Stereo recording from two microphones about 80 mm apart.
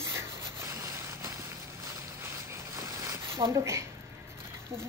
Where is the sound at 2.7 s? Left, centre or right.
Right.